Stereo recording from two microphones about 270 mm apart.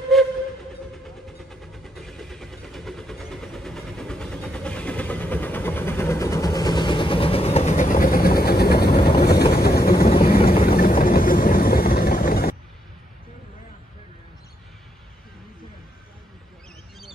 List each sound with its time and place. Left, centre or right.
0.1 s steam whistle: centre
1.5 s vehicle: centre; by 12.5 s left